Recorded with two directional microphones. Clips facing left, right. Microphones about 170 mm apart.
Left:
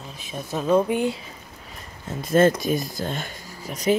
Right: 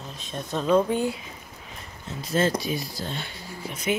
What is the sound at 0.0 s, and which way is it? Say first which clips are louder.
Speech: even; 5° left (ahead or behind).